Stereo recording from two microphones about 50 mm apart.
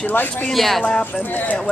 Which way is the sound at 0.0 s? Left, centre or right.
Left.